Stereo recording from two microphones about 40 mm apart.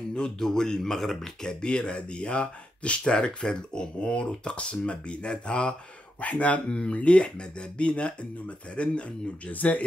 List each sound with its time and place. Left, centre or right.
0.1 s speech: centre
1.6 s speech: left
6.2 s speech: left
9.5 s speech: left